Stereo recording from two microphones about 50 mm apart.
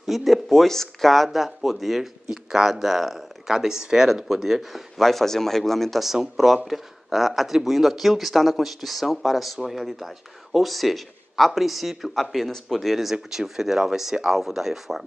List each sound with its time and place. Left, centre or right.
0.0 s speech: centre